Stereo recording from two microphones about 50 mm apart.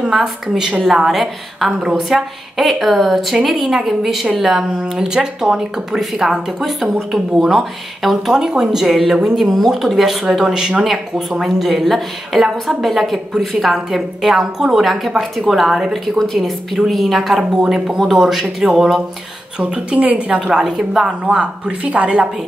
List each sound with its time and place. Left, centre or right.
0.0 s a woman's voice: centre
16.4 s a woman's voice: centre
19.6 s a woman's voice: right